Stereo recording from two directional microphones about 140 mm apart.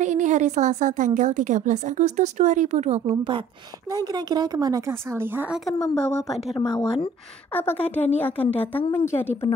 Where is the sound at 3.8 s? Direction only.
25° right (ahead or behind); by 6.5 s centre (ahead or behind).